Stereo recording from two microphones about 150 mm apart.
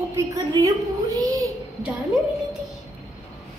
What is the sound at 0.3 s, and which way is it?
A woman's voice, 25° right (ahead or behind).